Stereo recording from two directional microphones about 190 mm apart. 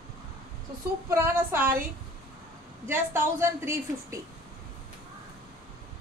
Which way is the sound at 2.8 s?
15° right (ahead or behind).